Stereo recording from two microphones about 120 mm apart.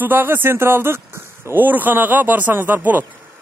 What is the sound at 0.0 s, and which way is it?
Speech, 15° right (ahead or behind).